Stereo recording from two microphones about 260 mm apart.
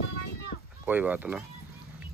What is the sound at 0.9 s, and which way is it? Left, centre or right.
Speech, centre.